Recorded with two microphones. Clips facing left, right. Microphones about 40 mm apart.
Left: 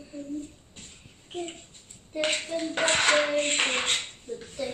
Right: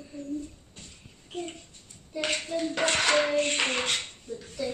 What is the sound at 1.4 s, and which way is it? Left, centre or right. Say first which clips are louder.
A child's voice: even; left.